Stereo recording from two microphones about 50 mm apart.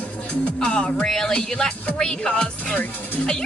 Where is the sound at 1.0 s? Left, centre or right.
Centre.